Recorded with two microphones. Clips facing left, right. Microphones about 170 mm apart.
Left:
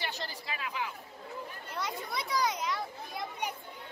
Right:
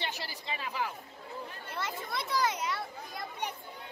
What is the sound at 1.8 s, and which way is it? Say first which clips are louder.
Speech: even; centre (ahead or behind).